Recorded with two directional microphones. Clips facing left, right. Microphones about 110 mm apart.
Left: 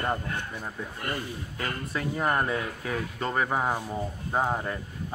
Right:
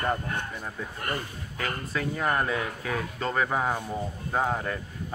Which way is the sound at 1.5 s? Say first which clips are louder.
Right 2 dB; 25° left (ahead or behind).